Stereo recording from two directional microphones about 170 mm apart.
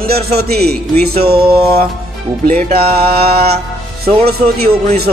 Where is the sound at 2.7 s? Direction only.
70° right (ahead or behind).